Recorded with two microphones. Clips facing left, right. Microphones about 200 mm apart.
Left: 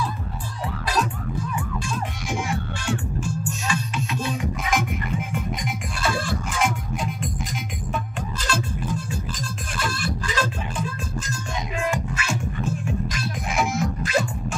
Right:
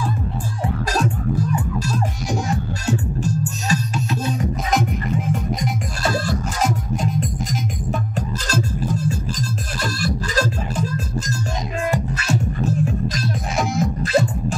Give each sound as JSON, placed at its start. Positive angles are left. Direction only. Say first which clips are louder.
{"t": 0.9, "sound": "music", "louder": "right 4 dB", "side_deg": -45}
{"t": 11.9, "sound": "music", "louder": "right 5 dB", "side_deg": -35}